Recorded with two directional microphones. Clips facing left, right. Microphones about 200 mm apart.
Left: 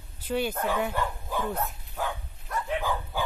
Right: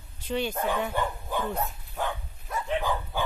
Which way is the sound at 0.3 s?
5° left (ahead or behind).